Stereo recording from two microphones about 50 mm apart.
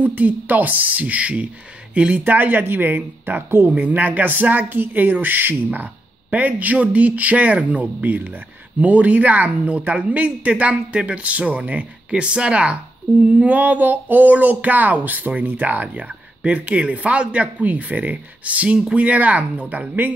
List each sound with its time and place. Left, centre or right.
0.0 s a woman's voice: right
2.2 s speech: right
6.3 s a woman's voice: right